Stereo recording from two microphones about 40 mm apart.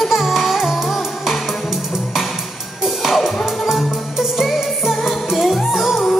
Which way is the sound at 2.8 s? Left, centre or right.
Centre.